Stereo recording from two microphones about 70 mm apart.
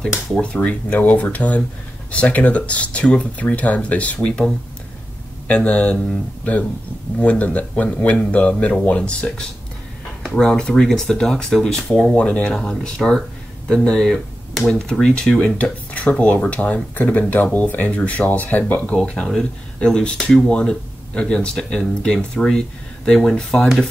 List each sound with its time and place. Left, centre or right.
0.4 s speech: centre
7.2 s speech: left; by 12.2 s centre
12.2 s speech: centre
18.9 s speech: centre